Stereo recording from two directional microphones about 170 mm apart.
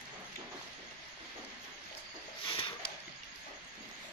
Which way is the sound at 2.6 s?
30° left (ahead or behind).